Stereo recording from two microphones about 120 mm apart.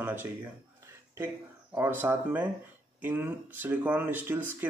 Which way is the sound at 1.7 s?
15° right (ahead or behind).